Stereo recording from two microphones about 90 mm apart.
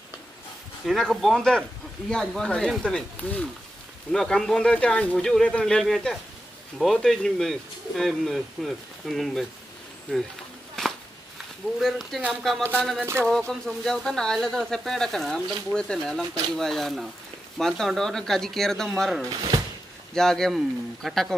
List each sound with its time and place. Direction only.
0.8 s speech: centre (ahead or behind)
10.8 s a sound: 5° left (ahead or behind)
11.8 s speech: centre (ahead or behind)
19.2 s speech: 40° right (ahead or behind)
20.2 s speech: 5° left (ahead or behind)